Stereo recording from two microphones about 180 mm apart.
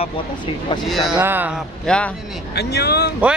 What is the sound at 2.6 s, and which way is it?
Speech, 65° left (ahead or behind).